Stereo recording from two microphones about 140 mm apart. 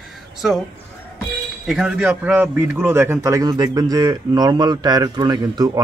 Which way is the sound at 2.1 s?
15° right (ahead or behind).